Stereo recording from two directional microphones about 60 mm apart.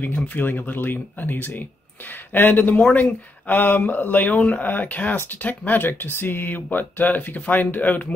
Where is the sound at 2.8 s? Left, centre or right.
Centre.